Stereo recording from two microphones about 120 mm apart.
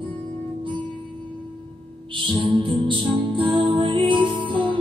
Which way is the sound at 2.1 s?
45° right (ahead or behind).